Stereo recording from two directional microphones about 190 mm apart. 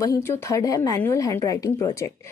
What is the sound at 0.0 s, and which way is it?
A woman's voice, 15° left (ahead or behind).